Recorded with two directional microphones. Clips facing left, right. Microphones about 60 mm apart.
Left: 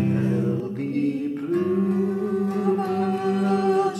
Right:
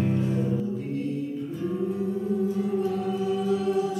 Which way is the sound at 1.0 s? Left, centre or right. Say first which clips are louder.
Left 5 dB; left.